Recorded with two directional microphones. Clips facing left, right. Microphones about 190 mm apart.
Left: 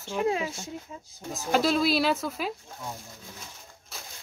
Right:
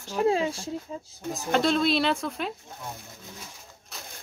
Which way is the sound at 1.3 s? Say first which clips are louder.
Even; 5° left (ahead or behind).